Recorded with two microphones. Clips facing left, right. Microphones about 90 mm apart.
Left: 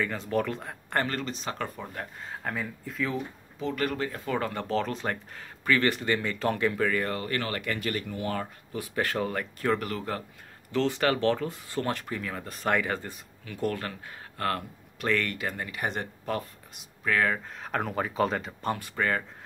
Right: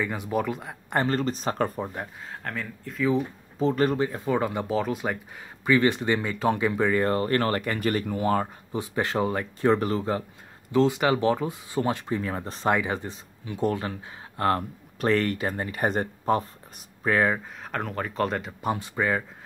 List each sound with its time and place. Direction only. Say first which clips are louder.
0.0 s speech: right 1 dB; 15° right (ahead or behind)
0.9 s speech: right 4 dB; 25° right (ahead or behind)
1.2 s speech: right 7 dB; 40° right (ahead or behind)
2.4 s speech: even; 5° left (ahead or behind)
3.2 s speech: right 8 dB; 35° right (ahead or behind)
8.7 s speech: right 3 dB; 20° right (ahead or behind)
12.2 s speech: right 5 dB; 30° right (ahead or behind)
12.7 s speech: right 2 dB; 15° right (ahead or behind)
17.6 s speech: left 1 dB; centre (ahead or behind)
18.7 s speech: right 3 dB; 15° right (ahead or behind)